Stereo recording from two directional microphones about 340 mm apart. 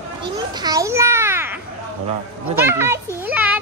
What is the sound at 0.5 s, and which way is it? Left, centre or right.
Babbling, centre.